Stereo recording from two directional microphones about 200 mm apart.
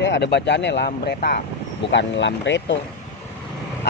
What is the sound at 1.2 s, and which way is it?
Speech, 45° left (ahead or behind).